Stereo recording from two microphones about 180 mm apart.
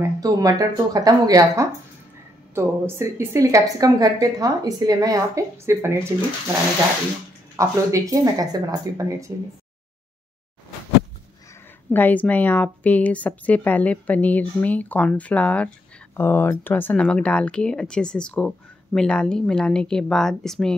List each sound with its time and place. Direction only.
0.0 s a woman's voice: 20° right (ahead or behind)
7.5 s a woman's voice: 15° right (ahead or behind)
11.9 s speech: 10° left (ahead or behind)